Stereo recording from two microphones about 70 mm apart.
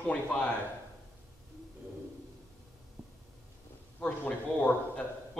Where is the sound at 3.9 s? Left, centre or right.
Left.